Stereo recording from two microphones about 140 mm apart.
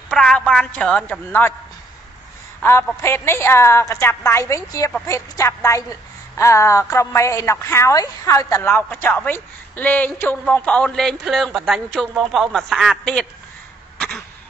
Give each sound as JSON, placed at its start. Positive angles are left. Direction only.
{"t": 0.1, "sound": "speech", "side_deg": 5}
{"t": 2.6, "sound": "a woman's voice", "side_deg": 15}
{"t": 13.9, "sound": "a sound", "side_deg": 10}